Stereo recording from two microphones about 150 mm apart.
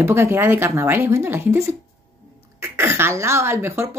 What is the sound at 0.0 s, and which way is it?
Speech, 15° right (ahead or behind).